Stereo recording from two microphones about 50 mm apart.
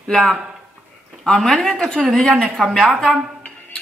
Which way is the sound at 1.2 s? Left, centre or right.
Centre.